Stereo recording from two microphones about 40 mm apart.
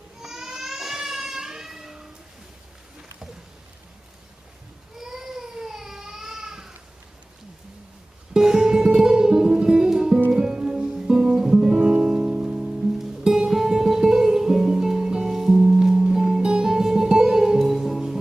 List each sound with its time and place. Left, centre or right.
0.2 s a sound: centre
4.9 s baby cry: centre
8.3 s music: centre
12.6 s music: centre
13.2 s music: centre